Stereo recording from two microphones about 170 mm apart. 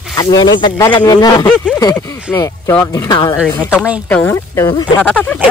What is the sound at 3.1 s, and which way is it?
Speech, 30° left (ahead or behind).